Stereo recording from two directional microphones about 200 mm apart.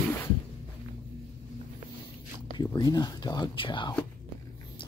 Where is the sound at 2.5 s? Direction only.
20° left (ahead or behind).